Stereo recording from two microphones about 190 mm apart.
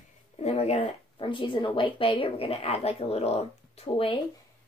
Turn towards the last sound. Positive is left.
turn(degrees=30)  # may be behind; listen again after turning